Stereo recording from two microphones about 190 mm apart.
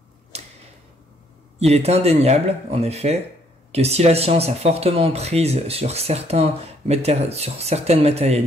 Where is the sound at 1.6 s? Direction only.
35° right (ahead or behind).